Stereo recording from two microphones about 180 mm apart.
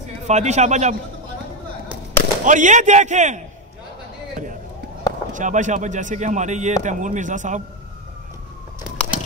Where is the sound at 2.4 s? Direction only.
45° right (ahead or behind).